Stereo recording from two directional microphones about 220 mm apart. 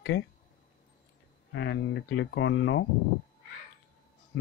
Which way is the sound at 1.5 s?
60° left (ahead or behind).